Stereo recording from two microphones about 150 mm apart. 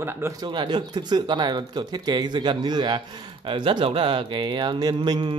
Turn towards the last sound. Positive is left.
turn(degrees=-30)  # may be behind; listen again after turning